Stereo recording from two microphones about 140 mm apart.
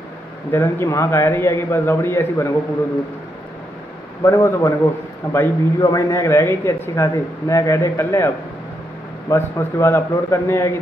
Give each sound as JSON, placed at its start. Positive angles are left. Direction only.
{"t": 0.5, "sound": "a man's voice", "side_deg": 15}
{"t": 4.2, "sound": "a man's voice", "side_deg": 20}
{"t": 9.3, "sound": "a man's voice", "side_deg": 20}